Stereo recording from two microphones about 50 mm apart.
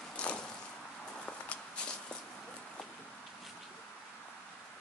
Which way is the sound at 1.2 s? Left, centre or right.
Left.